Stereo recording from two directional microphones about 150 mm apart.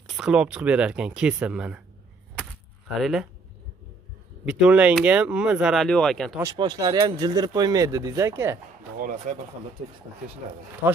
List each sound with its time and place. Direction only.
0.1 s speech: 5° right (ahead or behind)
3.0 s speech: centre (ahead or behind)
4.5 s speech: 10° right (ahead or behind)
6.4 s speech: 30° right (ahead or behind)
9.0 s speech: 65° right (ahead or behind)